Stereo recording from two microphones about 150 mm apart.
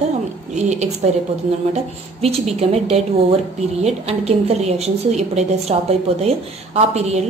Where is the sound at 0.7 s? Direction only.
50° right (ahead or behind).